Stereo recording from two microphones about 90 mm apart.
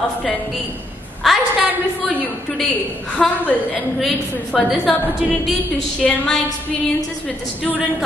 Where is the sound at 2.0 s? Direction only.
20° left (ahead or behind).